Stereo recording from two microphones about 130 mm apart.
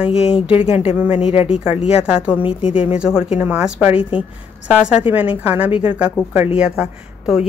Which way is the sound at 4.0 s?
45° left (ahead or behind).